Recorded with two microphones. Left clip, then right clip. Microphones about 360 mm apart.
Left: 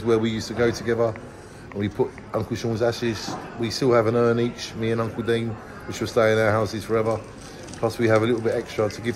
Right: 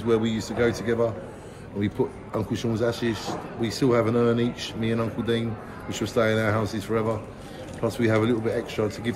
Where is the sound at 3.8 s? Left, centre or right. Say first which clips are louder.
Left 3 dB; centre.